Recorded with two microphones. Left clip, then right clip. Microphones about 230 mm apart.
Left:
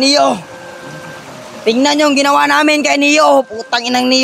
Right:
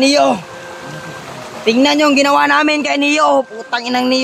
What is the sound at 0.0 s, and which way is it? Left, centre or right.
Speech, left.